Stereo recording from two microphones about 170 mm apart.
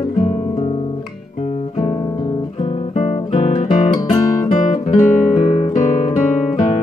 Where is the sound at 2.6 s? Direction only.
35° left (ahead or behind).